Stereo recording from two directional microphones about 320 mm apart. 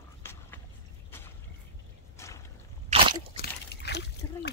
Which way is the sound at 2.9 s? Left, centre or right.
Centre.